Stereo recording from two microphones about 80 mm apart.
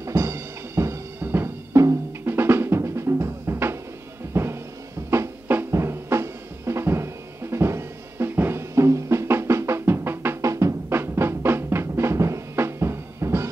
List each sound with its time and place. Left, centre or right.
0.0 s music: right
2.2 s drum: right
4.3 s music: right
5.5 s drum: right